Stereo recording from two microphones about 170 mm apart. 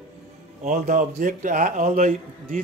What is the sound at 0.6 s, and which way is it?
A man's voice, 50° right (ahead or behind).